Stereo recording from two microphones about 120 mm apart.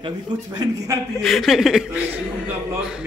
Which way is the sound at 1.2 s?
Centre (ahead or behind).